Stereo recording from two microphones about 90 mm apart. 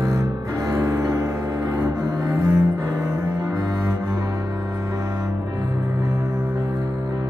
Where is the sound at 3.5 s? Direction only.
45° right (ahead or behind).